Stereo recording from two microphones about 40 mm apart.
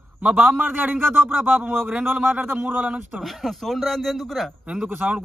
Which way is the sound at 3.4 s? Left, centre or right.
Centre.